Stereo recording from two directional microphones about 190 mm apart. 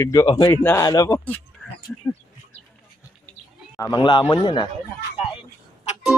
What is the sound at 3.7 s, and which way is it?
Speech, 15° left (ahead or behind).